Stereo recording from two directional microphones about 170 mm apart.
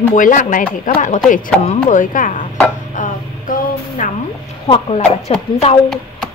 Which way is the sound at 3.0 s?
50° left (ahead or behind).